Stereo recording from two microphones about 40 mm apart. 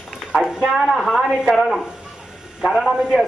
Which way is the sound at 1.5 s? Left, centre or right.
Centre.